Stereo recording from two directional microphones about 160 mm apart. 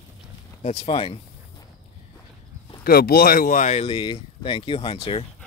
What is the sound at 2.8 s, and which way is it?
Speech, 70° left (ahead or behind).